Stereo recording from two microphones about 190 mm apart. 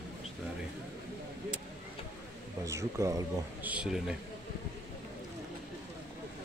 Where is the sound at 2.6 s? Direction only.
15° right (ahead or behind).